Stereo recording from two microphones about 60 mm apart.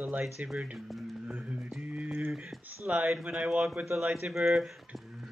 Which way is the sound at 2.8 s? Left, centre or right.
Centre.